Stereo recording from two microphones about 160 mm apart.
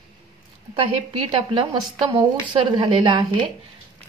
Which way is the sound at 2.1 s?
25° right (ahead or behind).